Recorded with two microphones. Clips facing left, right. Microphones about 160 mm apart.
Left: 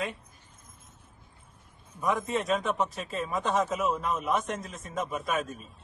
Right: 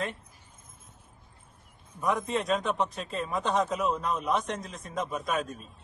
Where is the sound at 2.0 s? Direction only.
Centre (ahead or behind).